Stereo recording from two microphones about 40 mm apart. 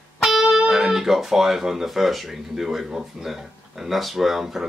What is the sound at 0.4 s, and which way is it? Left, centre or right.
Speech, centre.